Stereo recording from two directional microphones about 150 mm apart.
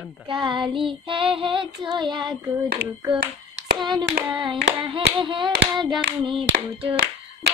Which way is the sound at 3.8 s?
30° right (ahead or behind).